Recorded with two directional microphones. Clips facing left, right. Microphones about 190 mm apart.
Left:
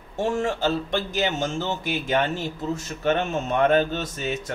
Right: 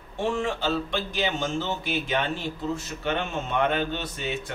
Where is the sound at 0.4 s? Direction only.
45° left (ahead or behind).